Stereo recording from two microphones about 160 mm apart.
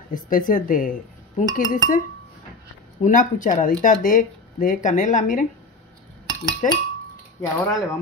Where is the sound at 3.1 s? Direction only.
55° left (ahead or behind).